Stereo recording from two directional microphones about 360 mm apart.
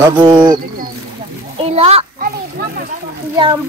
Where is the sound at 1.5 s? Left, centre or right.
Centre.